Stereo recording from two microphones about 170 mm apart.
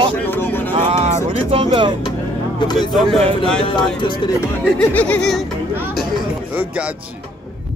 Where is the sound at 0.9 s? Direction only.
40° right (ahead or behind).